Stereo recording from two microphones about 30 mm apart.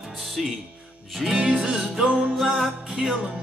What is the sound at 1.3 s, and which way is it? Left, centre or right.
Music, right.